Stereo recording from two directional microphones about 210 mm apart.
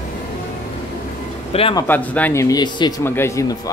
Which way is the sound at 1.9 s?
5° left (ahead or behind).